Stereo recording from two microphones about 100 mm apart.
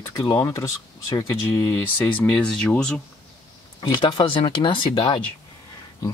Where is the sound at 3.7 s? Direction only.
50° left (ahead or behind).